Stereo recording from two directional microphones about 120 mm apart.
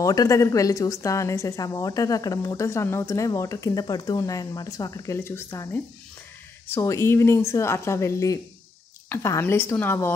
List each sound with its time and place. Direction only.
0.0 s a woman's voice: 30° left (ahead or behind)